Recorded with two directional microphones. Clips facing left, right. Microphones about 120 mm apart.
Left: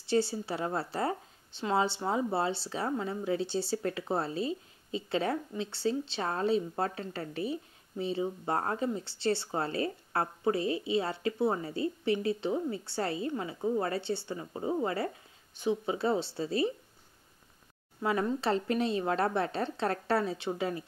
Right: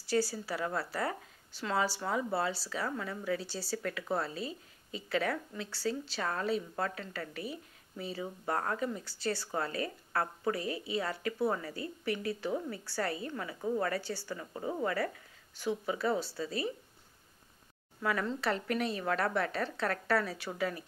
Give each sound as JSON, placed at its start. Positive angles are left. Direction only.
{"t": 0.0, "sound": "a woman's voice", "side_deg": 25}
{"t": 18.0, "sound": "a woman's voice", "side_deg": 25}